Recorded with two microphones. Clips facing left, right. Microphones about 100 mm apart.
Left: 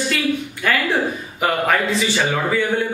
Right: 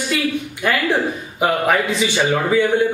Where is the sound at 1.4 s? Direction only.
15° right (ahead or behind).